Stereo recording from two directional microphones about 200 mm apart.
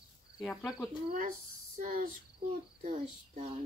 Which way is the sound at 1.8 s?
45° right (ahead or behind).